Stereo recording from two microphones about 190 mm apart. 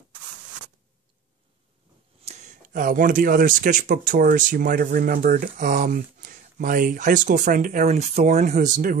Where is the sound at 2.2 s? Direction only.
45° right (ahead or behind).